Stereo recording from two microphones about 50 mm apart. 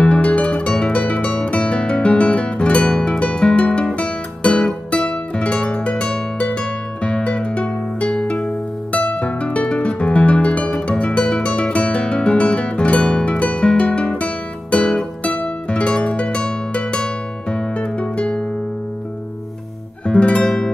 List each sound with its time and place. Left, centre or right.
0.0 s music: left
20.1 s music: left
20.4 s music: centre